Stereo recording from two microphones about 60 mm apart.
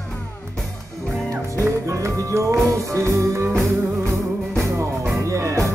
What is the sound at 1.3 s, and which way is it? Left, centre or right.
Music, right.